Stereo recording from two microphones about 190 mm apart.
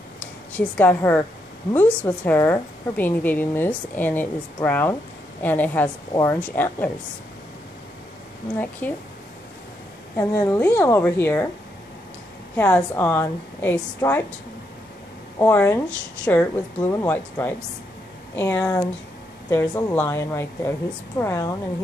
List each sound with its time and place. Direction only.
0.2 s a woman's voice: 10° left (ahead or behind)
8.8 s a woman's voice: 10° left (ahead or behind)
10.1 s a woman's voice: 15° left (ahead or behind)
12.5 s a woman's voice: 10° left (ahead or behind)
15.3 s a woman's voice: 15° left (ahead or behind)